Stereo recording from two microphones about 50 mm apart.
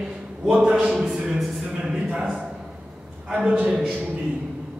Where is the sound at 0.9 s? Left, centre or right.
Centre.